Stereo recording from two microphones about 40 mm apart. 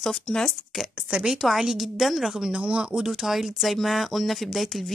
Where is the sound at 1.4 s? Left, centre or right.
Centre.